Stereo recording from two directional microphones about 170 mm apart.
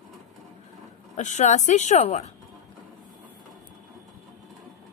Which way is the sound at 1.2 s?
45° left (ahead or behind).